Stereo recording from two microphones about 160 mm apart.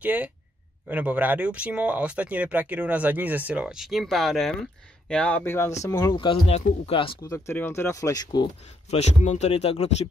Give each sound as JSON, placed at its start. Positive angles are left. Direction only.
{"t": 0.0, "sound": "speech", "side_deg": -10}
{"t": 5.8, "sound": "speech", "side_deg": 25}
{"t": 7.2, "sound": "speech", "side_deg": 15}
{"t": 8.9, "sound": "speech", "side_deg": 45}